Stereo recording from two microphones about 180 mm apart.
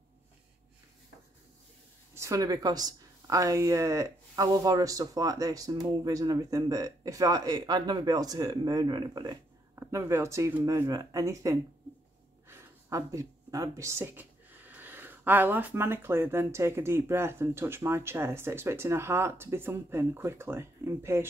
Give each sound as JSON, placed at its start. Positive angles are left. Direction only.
{"t": 2.1, "sound": "speech", "side_deg": -15}